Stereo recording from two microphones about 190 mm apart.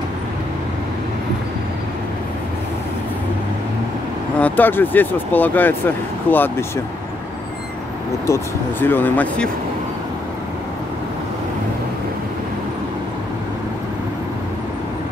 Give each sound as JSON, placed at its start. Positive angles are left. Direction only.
{"t": 4.4, "sound": "speech", "side_deg": 10}
{"t": 8.3, "sound": "speech", "side_deg": 10}